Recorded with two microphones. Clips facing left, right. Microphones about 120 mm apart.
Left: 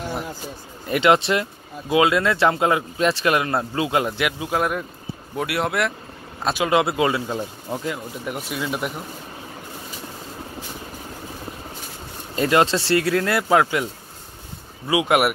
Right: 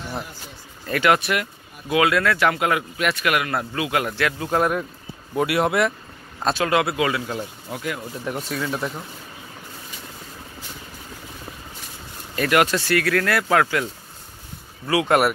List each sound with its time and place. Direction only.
0.8 s speech: 20° left (ahead or behind)
4.5 s speech: centre (ahead or behind)
6.5 s speech: 20° left (ahead or behind)
8.3 s speech: 10° left (ahead or behind)
12.4 s speech: 25° left (ahead or behind)
14.9 s speech: 15° left (ahead or behind)